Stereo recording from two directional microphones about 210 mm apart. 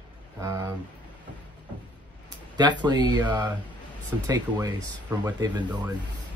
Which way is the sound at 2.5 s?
20° right (ahead or behind).